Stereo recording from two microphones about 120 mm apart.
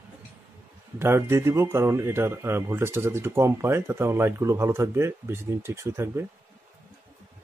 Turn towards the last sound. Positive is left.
turn(degrees=-20)  # may be behind; listen again after turning